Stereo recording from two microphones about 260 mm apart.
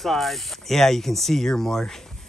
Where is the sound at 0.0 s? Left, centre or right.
Centre.